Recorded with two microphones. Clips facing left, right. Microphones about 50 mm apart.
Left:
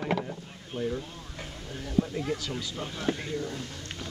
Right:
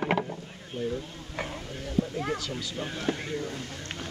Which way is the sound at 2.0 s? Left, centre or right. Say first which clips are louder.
Left 1 dB; centre.